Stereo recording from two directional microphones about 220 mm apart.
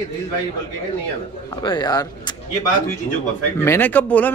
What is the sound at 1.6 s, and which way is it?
Speech, 20° left (ahead or behind).